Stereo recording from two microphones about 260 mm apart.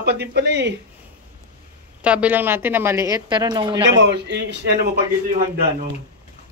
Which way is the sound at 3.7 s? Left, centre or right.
Right.